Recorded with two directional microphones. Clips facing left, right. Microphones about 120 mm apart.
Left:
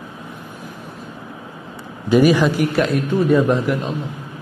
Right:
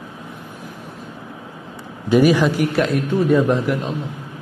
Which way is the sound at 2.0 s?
20° left (ahead or behind).